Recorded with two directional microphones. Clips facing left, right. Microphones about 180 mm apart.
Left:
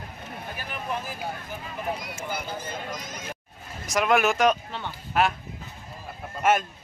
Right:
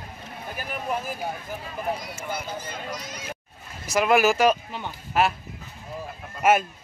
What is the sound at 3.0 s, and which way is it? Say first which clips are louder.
Speech: even; 50° left (ahead or behind).